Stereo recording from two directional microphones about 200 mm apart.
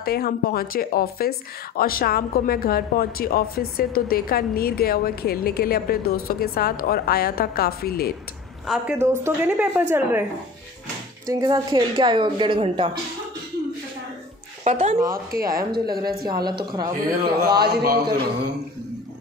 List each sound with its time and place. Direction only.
0.0 s speech: 50° left (ahead or behind)
8.6 s a woman's voice: 5° right (ahead or behind)
11.2 s speech: 20° right (ahead or behind)
14.6 s speech: 35° right (ahead or behind)
15.0 s speech: 45° right (ahead or behind)
16.4 s speech: 20° right (ahead or behind)
17.6 s speech: 50° right (ahead or behind)